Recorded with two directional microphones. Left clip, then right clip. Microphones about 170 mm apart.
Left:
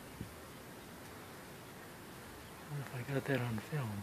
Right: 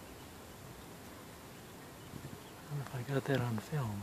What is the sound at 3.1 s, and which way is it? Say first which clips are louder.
Speech: right 2 dB; 10° right (ahead or behind).